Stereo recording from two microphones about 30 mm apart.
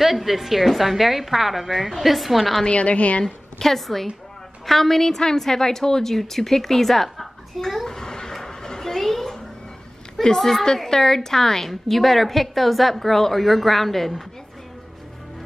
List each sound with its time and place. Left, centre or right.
0.0 s a woman's voice: centre
2.6 s a woman's voice: left
3.3 s a woman's voice: centre
7.9 s a sound: centre
8.9 s a sound: centre
10.3 s a woman's voice: centre